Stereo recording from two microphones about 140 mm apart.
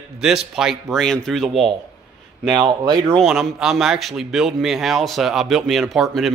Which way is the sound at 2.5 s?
30° right (ahead or behind).